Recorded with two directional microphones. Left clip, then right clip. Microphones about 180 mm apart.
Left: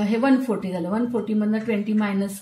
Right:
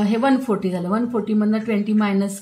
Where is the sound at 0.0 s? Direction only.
20° right (ahead or behind).